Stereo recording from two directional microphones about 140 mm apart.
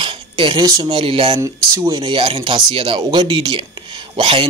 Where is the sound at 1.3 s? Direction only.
25° right (ahead or behind).